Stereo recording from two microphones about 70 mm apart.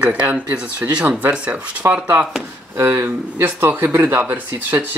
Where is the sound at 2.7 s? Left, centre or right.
Right.